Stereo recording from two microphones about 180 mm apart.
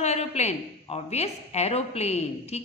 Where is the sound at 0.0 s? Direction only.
35° left (ahead or behind).